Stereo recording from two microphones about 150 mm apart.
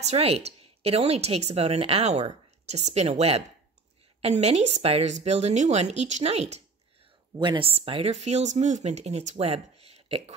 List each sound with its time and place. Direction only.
0.0 s speech: 45° right (ahead or behind)
7.3 s speech: 35° right (ahead or behind)